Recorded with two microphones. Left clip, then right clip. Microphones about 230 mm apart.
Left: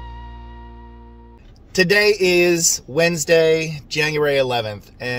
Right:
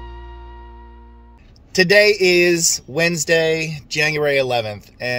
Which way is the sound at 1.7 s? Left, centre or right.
Centre.